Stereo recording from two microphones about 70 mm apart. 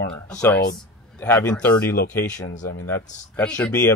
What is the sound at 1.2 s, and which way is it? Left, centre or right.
Speech, left.